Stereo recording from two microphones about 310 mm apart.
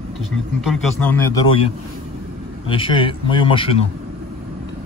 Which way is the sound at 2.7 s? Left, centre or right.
Centre.